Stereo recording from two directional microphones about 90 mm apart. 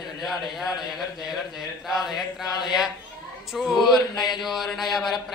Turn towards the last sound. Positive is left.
turn(degrees=0)  # may be behind; listen again after turning